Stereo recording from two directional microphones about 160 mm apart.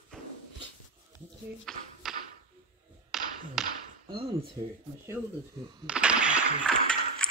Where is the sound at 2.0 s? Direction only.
Centre (ahead or behind).